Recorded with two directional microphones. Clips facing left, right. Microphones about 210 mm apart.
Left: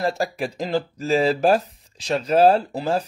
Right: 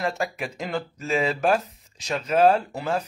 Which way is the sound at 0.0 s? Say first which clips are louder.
Left 4 dB; 35° left (ahead or behind).